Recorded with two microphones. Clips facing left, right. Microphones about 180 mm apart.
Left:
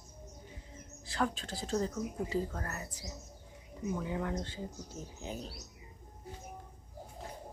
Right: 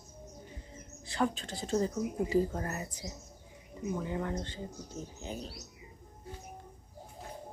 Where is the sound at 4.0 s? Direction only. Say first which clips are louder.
Right 1 dB; centre (ahead or behind).